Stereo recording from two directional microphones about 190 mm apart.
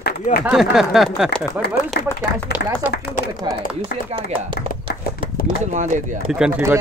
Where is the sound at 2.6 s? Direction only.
60° left (ahead or behind).